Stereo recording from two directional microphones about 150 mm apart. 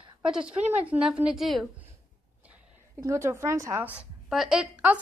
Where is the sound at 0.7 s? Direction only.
10° right (ahead or behind).